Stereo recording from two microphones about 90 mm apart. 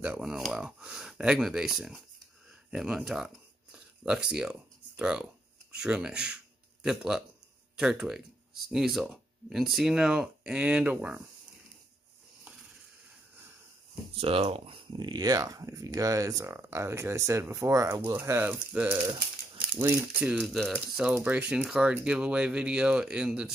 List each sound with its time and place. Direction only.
0.2 s speech: 5° right (ahead or behind)
3.7 s a sound: 10° right (ahead or behind)
7.7 s speech: 5° right (ahead or behind)
14.1 s speech: 90° right
15.0 s speech: 50° right (ahead or behind)
18.0 s speech: 25° right (ahead or behind)
19.8 s speech: 30° right (ahead or behind)
20.1 s speech: 15° right (ahead or behind)
20.4 s speech: centre (ahead or behind)